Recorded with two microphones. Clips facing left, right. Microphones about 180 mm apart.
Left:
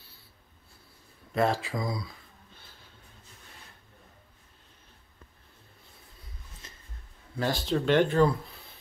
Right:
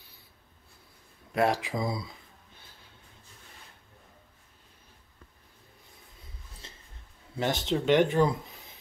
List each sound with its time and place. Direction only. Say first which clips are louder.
1.3 s speech: even; 15° right (ahead or behind)
6.6 s a sound: right 2 dB; 25° right (ahead or behind)
7.3 s speech: even; 20° right (ahead or behind)